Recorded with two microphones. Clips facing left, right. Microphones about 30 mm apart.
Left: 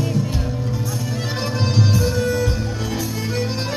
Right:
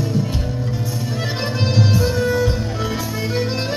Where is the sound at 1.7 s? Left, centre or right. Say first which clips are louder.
Right 2 dB; centre.